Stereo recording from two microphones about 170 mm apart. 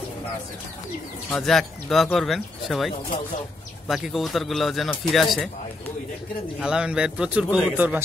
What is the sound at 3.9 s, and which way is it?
Speech, centre (ahead or behind).